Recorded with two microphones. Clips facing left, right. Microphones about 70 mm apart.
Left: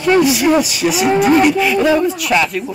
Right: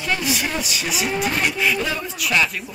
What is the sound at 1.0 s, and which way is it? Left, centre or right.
Cattle, left.